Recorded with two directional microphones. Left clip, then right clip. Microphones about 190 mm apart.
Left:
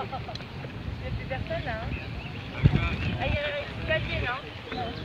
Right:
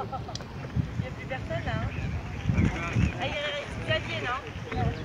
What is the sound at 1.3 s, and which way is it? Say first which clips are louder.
Vehicle: left 1 dB; 35° left (ahead or behind).